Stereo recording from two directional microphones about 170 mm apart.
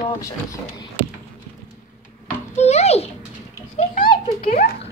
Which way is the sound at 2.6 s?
40° left (ahead or behind).